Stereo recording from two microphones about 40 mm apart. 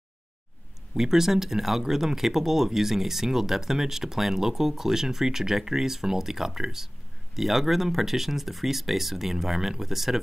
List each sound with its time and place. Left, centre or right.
0.9 s speech: centre